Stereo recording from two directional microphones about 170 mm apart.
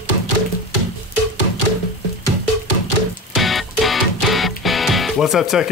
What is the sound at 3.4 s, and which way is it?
Music, centre (ahead or behind).